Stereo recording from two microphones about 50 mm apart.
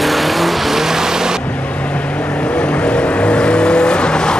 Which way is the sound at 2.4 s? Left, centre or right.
Left.